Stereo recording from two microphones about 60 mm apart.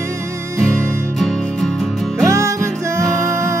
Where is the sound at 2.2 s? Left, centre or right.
Right.